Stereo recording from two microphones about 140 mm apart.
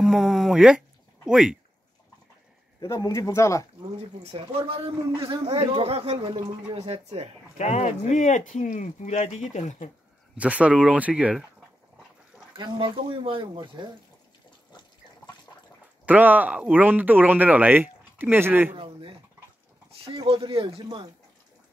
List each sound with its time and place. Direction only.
0.0 s speech: 5° right (ahead or behind)
2.8 s speech: 20° left (ahead or behind)
4.2 s speech: 45° right (ahead or behind)
7.5 s speech: 55° left (ahead or behind)
10.3 s a man's voice: 10° right (ahead or behind)
12.5 s speech: 35° right (ahead or behind)
16.1 s a man's voice: 10° right (ahead or behind)
18.8 s chicken: 40° right (ahead or behind)
19.9 s speech: 40° right (ahead or behind)